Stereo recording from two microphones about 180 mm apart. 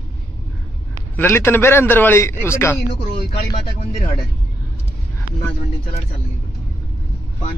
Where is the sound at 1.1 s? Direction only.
10° left (ahead or behind).